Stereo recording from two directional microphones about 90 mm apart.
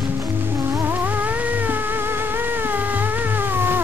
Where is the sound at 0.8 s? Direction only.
20° right (ahead or behind).